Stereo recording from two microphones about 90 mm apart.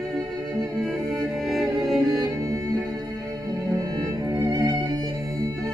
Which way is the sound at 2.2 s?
45° right (ahead or behind).